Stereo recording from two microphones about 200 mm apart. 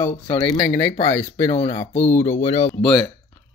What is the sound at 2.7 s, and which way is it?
Speech, 5° left (ahead or behind).